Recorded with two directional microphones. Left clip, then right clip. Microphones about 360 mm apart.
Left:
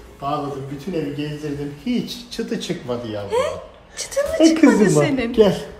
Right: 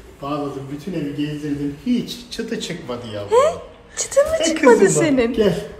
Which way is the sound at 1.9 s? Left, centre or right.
Left.